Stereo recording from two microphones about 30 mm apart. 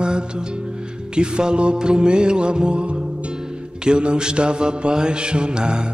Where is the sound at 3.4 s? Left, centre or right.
Right.